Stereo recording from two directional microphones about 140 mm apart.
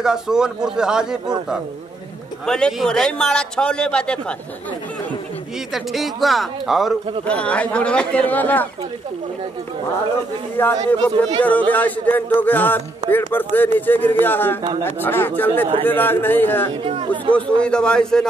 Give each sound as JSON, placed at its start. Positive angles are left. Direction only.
{"t": 0.0, "sound": "speech", "side_deg": -5}
{"t": 2.4, "sound": "speech", "side_deg": 5}
{"t": 5.7, "sound": "speech", "side_deg": 0}
{"t": 7.2, "sound": "music", "side_deg": 10}
{"t": 10.6, "sound": "music", "side_deg": 15}
{"t": 16.8, "sound": "speech", "side_deg": -40}
{"t": 17.3, "sound": "music", "side_deg": 10}